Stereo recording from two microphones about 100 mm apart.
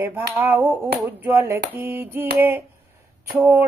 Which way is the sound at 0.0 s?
20° right (ahead or behind).